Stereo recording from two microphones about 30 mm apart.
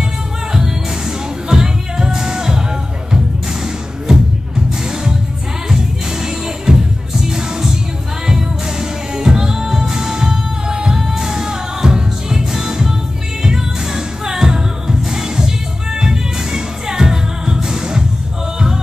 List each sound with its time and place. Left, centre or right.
0.5 s music: right
4.1 s music: centre
6.7 s music: right